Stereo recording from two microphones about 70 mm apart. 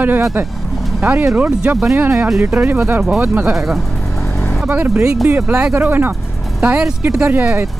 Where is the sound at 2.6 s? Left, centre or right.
Right.